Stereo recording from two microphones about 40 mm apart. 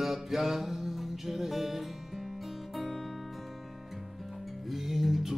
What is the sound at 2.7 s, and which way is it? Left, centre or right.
Music, centre.